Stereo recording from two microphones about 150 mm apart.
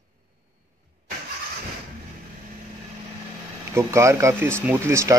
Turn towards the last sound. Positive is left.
turn(degrees=-20)  # may be behind; listen again after turning